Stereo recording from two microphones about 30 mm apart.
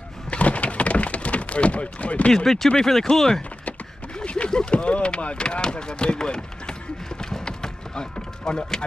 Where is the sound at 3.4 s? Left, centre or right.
Left.